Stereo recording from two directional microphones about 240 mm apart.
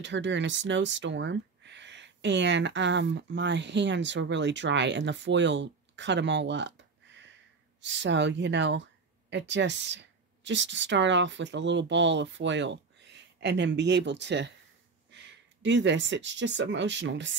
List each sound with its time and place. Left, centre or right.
0.0 s speech: right